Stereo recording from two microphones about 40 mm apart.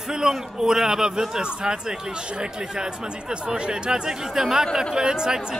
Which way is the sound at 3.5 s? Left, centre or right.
Centre.